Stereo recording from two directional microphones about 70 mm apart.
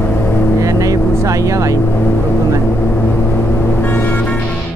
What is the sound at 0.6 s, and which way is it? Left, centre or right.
Vehicle, right.